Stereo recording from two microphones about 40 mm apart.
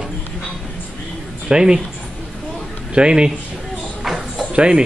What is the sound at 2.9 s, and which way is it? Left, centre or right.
Speech, right.